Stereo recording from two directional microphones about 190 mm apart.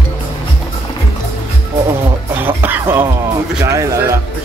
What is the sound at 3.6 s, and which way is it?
Speech, 15° right (ahead or behind).